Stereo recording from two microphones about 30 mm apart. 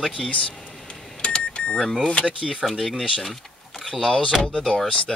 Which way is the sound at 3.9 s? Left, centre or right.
Centre.